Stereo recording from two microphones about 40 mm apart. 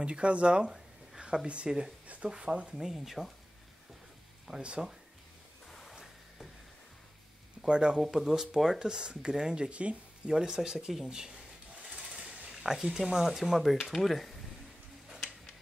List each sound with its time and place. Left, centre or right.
0.0 s speech: right
0.7 s a sound: centre
1.2 s speech: right
2.7 s speech: centre
4.6 s speech: right
5.7 s music: centre
7.6 s speech: right
8.0 s speech: centre
9.7 s speech: right
10.2 s speech: centre
12.4 s speech: centre